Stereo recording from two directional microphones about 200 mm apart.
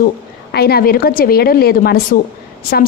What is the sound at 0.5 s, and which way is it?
A woman's voice, 50° left (ahead or behind).